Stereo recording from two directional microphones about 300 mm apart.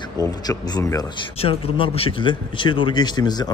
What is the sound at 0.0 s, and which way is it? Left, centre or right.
Speech, centre.